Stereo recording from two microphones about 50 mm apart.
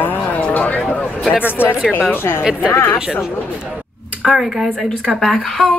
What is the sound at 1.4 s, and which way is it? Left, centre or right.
A woman's voice, left.